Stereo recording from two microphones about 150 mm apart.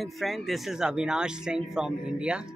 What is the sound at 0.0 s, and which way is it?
Speech, centre (ahead or behind).